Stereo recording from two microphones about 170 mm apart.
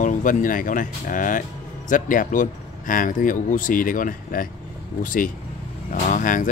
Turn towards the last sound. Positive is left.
turn(degrees=50)  # may be behind; listen again after turning